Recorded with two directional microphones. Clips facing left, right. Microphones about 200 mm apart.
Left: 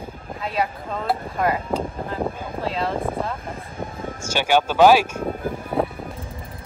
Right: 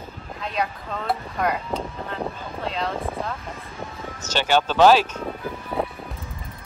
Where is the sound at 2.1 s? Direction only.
5° left (ahead or behind).